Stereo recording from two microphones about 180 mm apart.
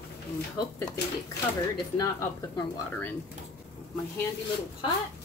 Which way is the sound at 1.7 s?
20° left (ahead or behind).